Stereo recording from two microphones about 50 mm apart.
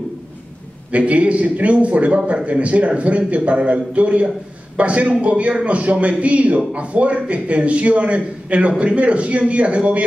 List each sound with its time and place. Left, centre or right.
0.9 s a man's voice: right